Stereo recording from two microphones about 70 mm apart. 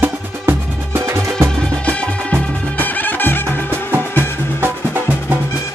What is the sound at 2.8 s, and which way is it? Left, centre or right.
Music, left.